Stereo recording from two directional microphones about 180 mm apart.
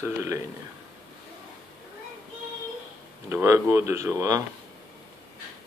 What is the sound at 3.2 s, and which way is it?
Speech, 15° right (ahead or behind).